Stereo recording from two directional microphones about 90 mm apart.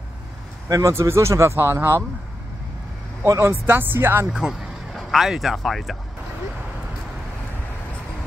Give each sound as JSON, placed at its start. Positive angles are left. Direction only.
{"t": 0.7, "sound": "speech", "side_deg": -40}
{"t": 3.3, "sound": "speech", "side_deg": -35}
{"t": 3.6, "sound": "speech", "side_deg": -25}
{"t": 4.3, "sound": "speech", "side_deg": -5}